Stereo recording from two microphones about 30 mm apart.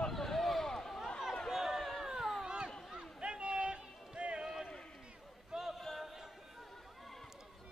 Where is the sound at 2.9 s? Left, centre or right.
Right.